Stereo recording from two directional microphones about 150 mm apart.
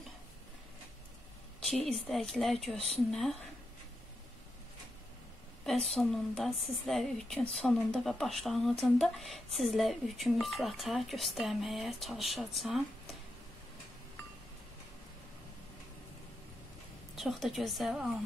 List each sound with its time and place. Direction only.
1.9 s a woman's voice: centre (ahead or behind)
5.9 s a woman's voice: centre (ahead or behind)
17.1 s a woman's voice: centre (ahead or behind)